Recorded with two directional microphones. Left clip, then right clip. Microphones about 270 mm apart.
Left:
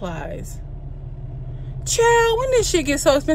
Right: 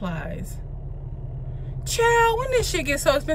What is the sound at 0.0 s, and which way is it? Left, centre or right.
Speech, centre.